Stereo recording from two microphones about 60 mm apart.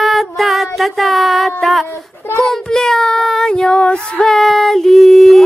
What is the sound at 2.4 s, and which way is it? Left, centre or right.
Child singing, centre.